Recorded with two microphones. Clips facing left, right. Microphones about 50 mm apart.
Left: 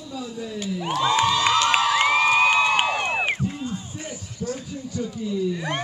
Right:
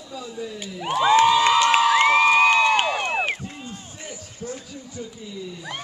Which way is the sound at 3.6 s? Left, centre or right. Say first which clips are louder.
Left 6 dB; centre.